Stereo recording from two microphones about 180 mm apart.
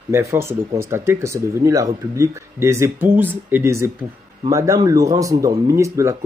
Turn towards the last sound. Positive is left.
turn(degrees=-15)  # may be behind; listen again after turning